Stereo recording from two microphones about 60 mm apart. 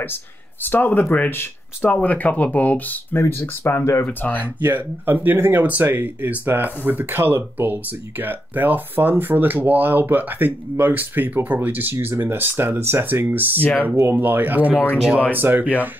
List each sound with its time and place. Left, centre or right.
0.7 s speech: left
1.0 s speech: left
3.2 s speech: left
4.4 s speech: right